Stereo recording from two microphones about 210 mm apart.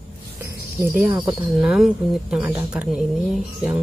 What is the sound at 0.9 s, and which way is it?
Speech, 5° right (ahead or behind).